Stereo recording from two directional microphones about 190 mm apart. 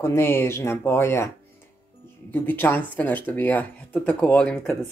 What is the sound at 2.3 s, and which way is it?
Speech, 10° left (ahead or behind).